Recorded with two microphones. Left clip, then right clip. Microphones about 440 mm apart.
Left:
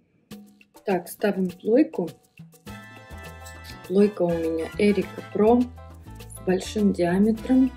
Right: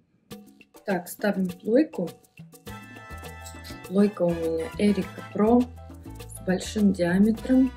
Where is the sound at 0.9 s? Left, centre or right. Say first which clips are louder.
Left 3 dB; centre.